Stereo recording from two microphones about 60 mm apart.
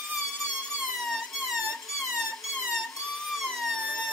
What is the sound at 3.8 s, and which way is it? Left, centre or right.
Emergency vehicle, centre.